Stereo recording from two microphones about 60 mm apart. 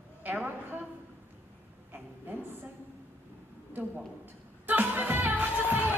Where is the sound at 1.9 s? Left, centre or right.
Right.